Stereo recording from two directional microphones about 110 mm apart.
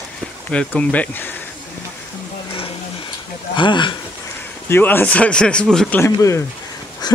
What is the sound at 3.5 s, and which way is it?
Speech, 45° left (ahead or behind).